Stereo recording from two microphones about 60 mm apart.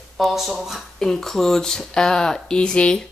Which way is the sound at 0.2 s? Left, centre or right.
Centre.